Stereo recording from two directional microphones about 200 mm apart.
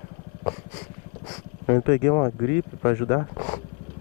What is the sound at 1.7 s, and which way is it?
Speech, 20° left (ahead or behind).